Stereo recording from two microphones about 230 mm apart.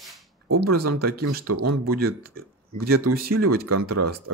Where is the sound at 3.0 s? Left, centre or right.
Right.